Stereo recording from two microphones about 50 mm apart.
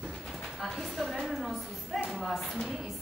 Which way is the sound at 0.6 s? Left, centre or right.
Centre.